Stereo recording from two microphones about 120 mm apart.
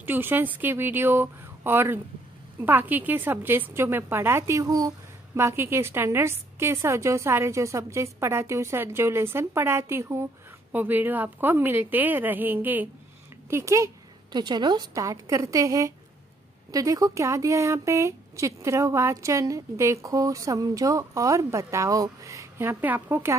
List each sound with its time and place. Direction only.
0.0 s a woman's voice: 15° right (ahead or behind)
14.3 s a woman's voice: 40° right (ahead or behind); by 23.3 s 20° right (ahead or behind)